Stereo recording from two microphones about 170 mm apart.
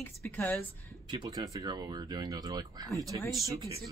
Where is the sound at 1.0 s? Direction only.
25° right (ahead or behind).